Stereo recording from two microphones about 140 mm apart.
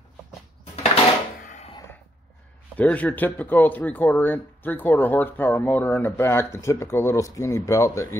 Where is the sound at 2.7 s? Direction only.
10° left (ahead or behind).